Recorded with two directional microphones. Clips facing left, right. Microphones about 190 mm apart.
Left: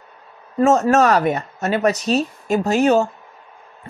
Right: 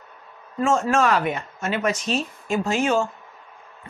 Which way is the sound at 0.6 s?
40° left (ahead or behind).